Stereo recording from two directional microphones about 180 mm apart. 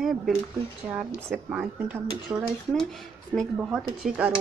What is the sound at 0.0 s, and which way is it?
Speech, centre (ahead or behind).